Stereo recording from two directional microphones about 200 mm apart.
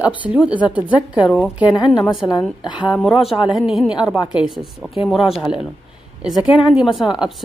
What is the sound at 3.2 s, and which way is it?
Speech, 25° left (ahead or behind).